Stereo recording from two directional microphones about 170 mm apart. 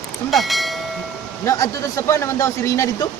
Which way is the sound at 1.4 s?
15° left (ahead or behind).